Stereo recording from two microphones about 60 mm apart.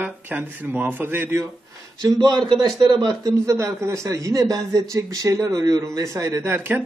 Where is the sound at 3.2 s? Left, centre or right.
Right.